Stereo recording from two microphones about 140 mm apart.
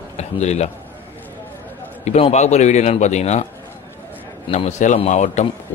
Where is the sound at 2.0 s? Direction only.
55° left (ahead or behind).